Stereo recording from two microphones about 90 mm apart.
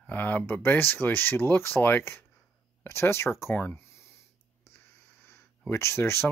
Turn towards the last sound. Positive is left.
turn(degrees=30)  # may be behind; listen again after turning